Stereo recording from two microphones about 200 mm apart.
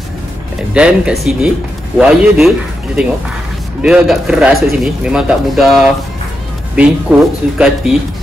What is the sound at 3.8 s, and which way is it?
Speech, 5° right (ahead or behind).